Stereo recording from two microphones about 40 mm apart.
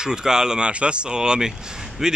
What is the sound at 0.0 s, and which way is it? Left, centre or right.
Speech, centre.